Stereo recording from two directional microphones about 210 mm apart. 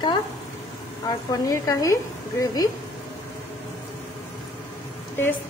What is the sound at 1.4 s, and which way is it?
A woman's voice, 15° left (ahead or behind).